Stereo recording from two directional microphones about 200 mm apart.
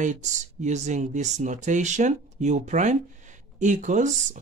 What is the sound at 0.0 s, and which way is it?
Speech, 35° right (ahead or behind).